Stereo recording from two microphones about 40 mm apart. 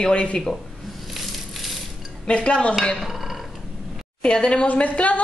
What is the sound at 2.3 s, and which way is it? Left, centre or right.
Speech, left.